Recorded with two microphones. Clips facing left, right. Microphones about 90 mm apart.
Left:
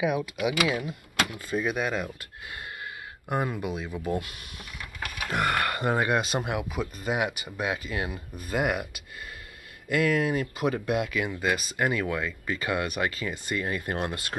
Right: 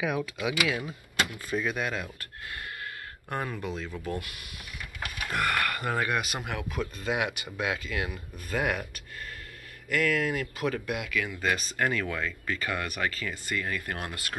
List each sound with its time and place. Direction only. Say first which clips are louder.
0.0 s speech: left 3 dB; 5° left (ahead or behind)
0.6 s speech: left 3 dB; 25° left (ahead or behind)
3.3 s speech: left 4 dB; 15° left (ahead or behind)
6.5 s speech: left 3 dB; 10° left (ahead or behind)
7.9 s speech: left 1 dB; 25° left (ahead or behind)
11.4 s speech: left 1 dB; 10° left (ahead or behind); by 14.3 s 25° left (ahead or behind)